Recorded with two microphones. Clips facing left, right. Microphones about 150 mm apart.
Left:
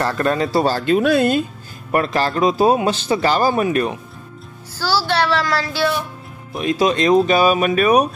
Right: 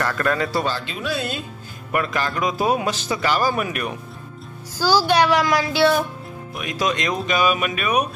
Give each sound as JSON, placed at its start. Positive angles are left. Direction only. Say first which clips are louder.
{"t": 0.0, "sound": "a man's voice", "louder": "left 3 dB", "side_deg": 25}
{"t": 0.7, "sound": "speech", "louder": "left 10 dB", "side_deg": 45}
{"t": 1.9, "sound": "a man's voice", "louder": "left 5 dB", "side_deg": 35}
{"t": 4.7, "sound": "a sound", "louder": "right 2 dB", "side_deg": -15}
{"t": 6.5, "sound": "speech", "louder": "left 7 dB", "side_deg": 30}